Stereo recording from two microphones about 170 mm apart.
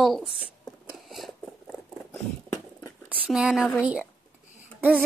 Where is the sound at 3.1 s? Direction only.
5° right (ahead or behind).